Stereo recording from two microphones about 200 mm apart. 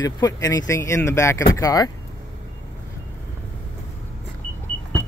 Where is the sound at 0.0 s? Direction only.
15° left (ahead or behind).